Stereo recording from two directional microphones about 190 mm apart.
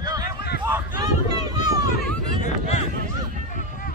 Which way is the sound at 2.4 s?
35° left (ahead or behind).